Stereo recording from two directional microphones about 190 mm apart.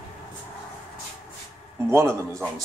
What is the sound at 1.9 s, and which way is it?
Speech, 15° right (ahead or behind).